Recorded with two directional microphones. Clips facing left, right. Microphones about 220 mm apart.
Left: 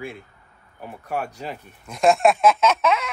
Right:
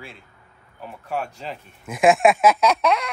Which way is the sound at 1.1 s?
10° left (ahead or behind).